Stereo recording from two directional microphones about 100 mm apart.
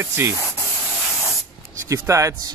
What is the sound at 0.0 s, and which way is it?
Speech, 25° right (ahead or behind).